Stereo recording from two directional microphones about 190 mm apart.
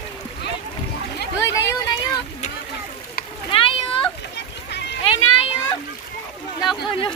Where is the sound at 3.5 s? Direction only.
30° left (ahead or behind).